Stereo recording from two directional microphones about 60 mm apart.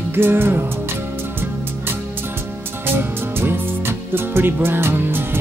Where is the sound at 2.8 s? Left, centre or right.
Right.